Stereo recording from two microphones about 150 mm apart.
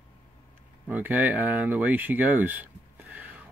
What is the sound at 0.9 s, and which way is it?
Speech, 10° right (ahead or behind).